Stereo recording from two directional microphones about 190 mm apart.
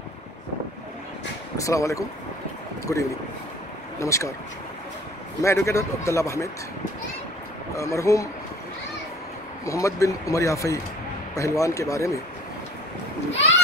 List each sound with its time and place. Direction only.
1.6 s speech: 15° left (ahead or behind)
5.4 s speech: 15° left (ahead or behind)
7.7 s speech: 15° left (ahead or behind)
9.7 s speech: 15° left (ahead or behind)